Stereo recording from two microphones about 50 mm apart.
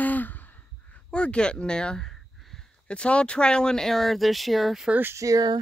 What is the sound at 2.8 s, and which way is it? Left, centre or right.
Speech, left.